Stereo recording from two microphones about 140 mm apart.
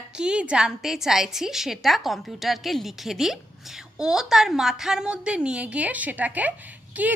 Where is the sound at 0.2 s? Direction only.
5° right (ahead or behind).